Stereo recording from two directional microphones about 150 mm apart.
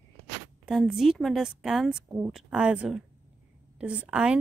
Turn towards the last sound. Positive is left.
turn(degrees=-5)  # may be behind; listen again after turning